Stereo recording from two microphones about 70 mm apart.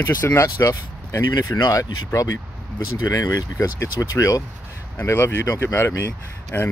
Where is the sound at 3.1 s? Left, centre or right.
Left.